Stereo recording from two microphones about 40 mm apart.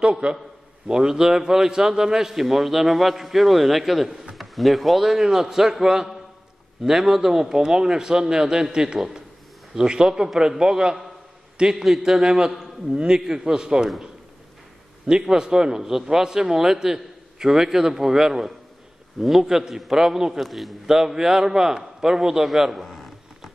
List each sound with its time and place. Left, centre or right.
0.0 s a man's voice: right
11.7 s a man's voice: centre
12.1 s a man's voice: centre
13.2 s a man's voice: centre
15.0 s a man's voice: centre
20.3 s a man's voice: centre
20.9 s a man's voice: centre
22.8 s a sound: centre